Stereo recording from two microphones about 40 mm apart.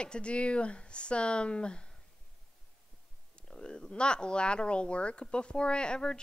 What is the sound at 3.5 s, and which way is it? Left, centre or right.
Speech, left.